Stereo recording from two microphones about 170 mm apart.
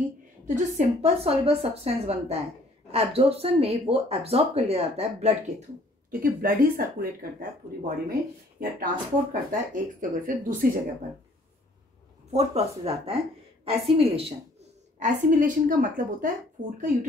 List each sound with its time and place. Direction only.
0.7 s speech: 35° right (ahead or behind)
6.0 s speech: 60° right (ahead or behind)
12.3 s speech: 40° right (ahead or behind)
15.0 s speech: 50° right (ahead or behind)